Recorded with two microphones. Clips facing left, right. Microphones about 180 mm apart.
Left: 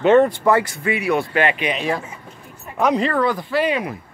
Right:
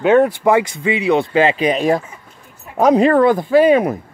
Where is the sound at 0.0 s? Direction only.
5° right (ahead or behind).